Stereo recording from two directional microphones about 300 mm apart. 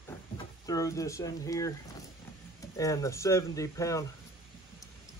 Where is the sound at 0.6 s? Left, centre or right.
Centre.